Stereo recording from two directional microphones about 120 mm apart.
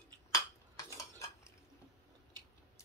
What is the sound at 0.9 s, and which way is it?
Cutlery, 25° left (ahead or behind).